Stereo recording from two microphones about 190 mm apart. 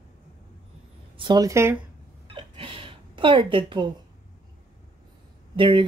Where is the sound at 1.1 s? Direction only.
25° right (ahead or behind).